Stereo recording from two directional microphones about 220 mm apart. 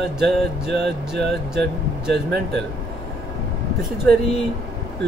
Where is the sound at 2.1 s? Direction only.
45° right (ahead or behind).